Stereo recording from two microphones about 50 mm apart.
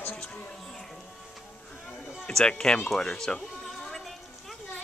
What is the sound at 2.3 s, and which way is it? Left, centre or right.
Speech, centre.